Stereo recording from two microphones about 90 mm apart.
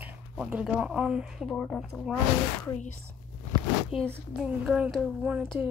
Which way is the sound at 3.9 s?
90° left.